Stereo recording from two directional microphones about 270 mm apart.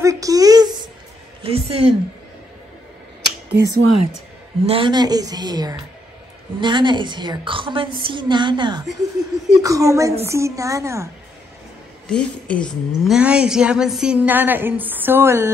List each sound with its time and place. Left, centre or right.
0.0 s a sound: centre
1.4 s a woman's voice: right
3.2 s finger snapping: right
3.8 s a woman's voice: right
4.6 s a woman's voice: centre
12.1 s a woman's voice: centre